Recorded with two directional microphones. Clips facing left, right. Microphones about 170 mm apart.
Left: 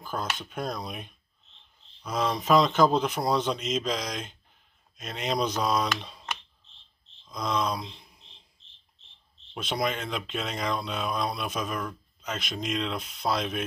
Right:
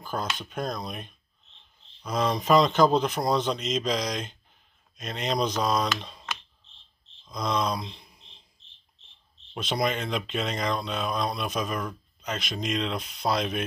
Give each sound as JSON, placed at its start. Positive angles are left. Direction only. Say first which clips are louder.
{"t": 0.0, "sound": "speech", "louder": "right 1 dB", "side_deg": 0}
{"t": 7.2, "sound": "speech", "louder": "right 1 dB", "side_deg": 5}
{"t": 9.6, "sound": "speech", "louder": "right 2 dB", "side_deg": 5}